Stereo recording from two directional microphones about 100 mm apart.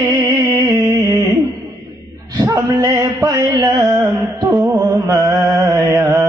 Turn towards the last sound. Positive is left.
turn(degrees=-25)  # may be behind; listen again after turning